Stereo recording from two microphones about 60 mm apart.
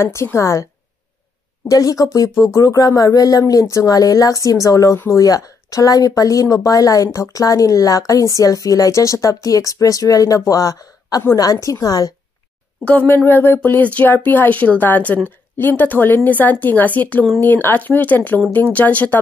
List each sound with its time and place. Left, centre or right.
0.0 s a woman's voice: left
1.7 s speech: left
2.3 s speech: left
7.1 s speech: left
13.0 s a woman's voice: left